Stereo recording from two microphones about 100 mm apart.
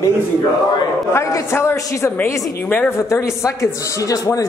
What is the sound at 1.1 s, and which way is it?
A woman's voice, 30° left (ahead or behind).